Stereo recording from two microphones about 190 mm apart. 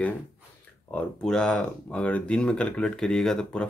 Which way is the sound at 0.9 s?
5° left (ahead or behind).